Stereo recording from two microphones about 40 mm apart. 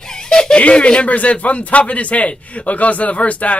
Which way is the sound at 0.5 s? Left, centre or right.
Left.